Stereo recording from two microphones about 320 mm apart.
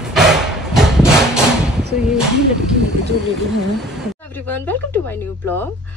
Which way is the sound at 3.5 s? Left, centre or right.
Centre.